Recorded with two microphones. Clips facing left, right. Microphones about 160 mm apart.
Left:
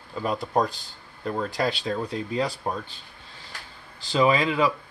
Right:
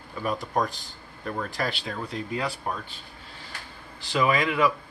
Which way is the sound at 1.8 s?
35° left (ahead or behind).